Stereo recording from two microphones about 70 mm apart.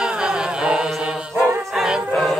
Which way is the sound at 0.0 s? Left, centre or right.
Centre.